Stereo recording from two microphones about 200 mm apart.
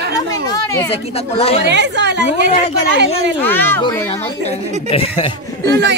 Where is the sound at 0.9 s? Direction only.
30° left (ahead or behind).